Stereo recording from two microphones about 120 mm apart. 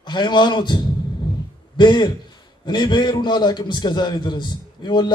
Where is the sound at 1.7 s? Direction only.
40° left (ahead or behind).